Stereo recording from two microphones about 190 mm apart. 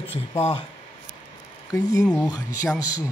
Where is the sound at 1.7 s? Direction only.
15° left (ahead or behind).